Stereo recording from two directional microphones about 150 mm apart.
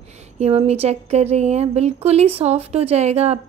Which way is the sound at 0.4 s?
45° right (ahead or behind).